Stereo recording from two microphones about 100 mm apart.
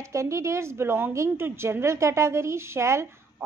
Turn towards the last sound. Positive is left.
turn(degrees=-25)  # may be behind; listen again after turning